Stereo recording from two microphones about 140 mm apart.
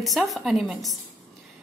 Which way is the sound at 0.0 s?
Centre (ahead or behind).